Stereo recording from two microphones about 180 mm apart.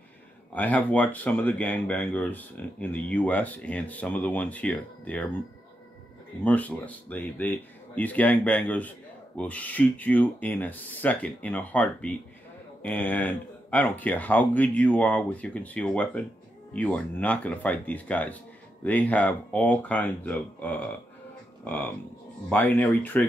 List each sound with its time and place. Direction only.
0.6 s speech: 10° left (ahead or behind)
6.4 s speech: 10° left (ahead or behind)